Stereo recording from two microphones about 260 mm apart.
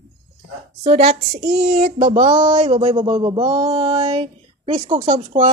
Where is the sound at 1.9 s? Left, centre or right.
Right.